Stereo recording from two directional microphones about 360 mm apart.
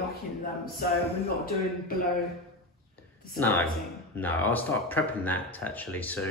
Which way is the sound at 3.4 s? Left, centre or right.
Centre.